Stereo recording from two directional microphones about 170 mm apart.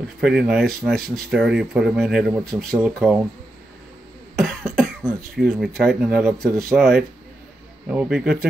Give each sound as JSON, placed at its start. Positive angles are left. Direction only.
{"t": 0.2, "sound": "speech", "side_deg": -5}
{"t": 0.9, "sound": "speech", "side_deg": -60}
{"t": 1.3, "sound": "speech", "side_deg": 0}
{"t": 4.4, "sound": "speech", "side_deg": 0}